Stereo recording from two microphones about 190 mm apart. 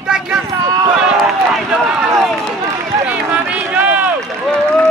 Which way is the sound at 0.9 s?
5° right (ahead or behind).